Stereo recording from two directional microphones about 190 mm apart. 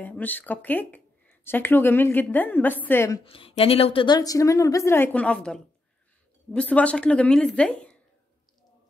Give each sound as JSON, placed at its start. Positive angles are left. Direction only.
{"t": 0.0, "sound": "speech", "side_deg": 10}
{"t": 3.3, "sound": "a woman's voice", "side_deg": 30}